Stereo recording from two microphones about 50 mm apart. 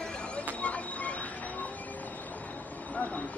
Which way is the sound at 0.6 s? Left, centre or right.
Left.